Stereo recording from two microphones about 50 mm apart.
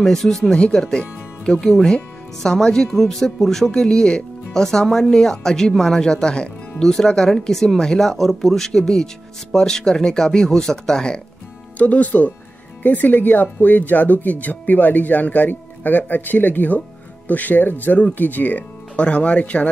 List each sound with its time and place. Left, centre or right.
0.0 s speech: centre
4.8 s speech: centre
5.1 s speech: centre
11.8 s speech: left
18.9 s speech: left